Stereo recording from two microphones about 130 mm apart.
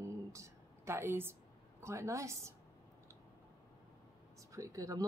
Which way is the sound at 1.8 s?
25° right (ahead or behind).